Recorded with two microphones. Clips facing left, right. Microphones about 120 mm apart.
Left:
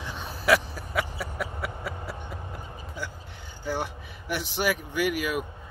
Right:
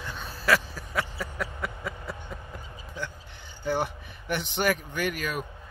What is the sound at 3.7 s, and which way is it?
Speech, 5° left (ahead or behind).